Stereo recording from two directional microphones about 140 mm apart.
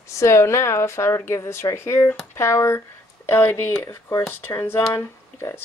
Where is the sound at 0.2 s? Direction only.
20° left (ahead or behind).